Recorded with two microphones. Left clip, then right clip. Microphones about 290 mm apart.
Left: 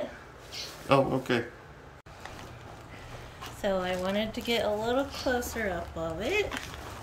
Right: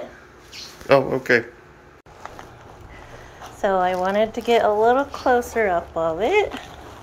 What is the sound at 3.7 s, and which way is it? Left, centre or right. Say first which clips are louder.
Speech: right 10 dB; right.